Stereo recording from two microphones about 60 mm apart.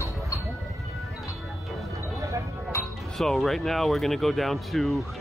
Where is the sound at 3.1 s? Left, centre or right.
Centre.